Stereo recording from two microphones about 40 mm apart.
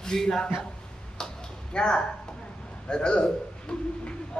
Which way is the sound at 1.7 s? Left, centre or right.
Left.